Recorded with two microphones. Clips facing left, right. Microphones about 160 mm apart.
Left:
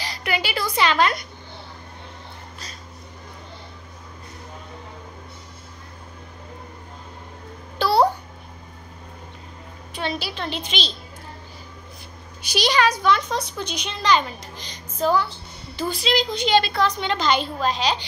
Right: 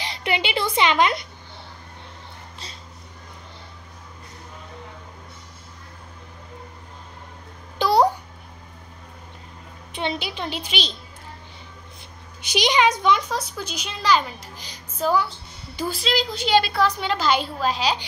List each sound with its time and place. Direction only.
0.0 s a woman's voice: 25° right (ahead or behind)
7.8 s babbling: 15° right (ahead or behind)
9.9 s a woman's voice: 20° right (ahead or behind)
12.5 s a woman's voice: 15° right (ahead or behind)
13.3 s a woman's voice: 5° right (ahead or behind)